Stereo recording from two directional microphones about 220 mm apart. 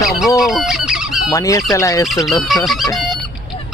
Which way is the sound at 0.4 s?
Centre (ahead or behind).